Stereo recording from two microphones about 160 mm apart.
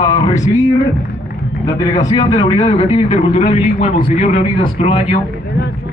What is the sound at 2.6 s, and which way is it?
A man's voice, 35° left (ahead or behind).